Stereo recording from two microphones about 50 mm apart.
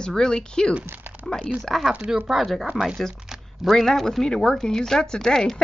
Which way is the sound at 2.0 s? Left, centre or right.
Centre.